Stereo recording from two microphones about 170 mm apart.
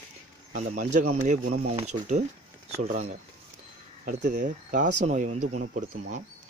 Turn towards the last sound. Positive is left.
turn(degrees=-45)  # may be behind; listen again after turning